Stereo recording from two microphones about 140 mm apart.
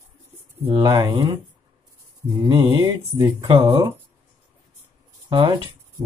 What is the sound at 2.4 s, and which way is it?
Speech, 35° right (ahead or behind).